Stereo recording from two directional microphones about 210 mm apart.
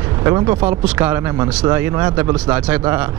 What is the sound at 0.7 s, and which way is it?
A man's voice, 10° right (ahead or behind).